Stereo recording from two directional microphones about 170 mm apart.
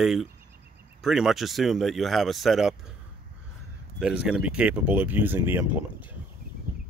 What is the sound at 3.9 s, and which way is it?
Speech, 5° right (ahead or behind).